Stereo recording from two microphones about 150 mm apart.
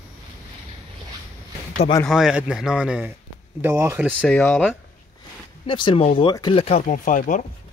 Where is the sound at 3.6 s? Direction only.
15° right (ahead or behind).